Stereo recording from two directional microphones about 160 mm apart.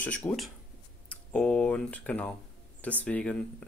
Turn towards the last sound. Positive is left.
turn(degrees=5)  # may be behind; listen again after turning